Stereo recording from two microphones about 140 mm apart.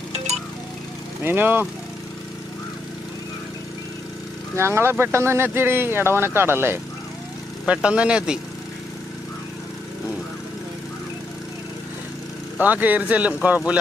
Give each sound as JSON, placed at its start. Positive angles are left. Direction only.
{"t": 1.2, "sound": "speech", "side_deg": -15}
{"t": 4.6, "sound": "speech", "side_deg": -20}
{"t": 12.5, "sound": "speech", "side_deg": -10}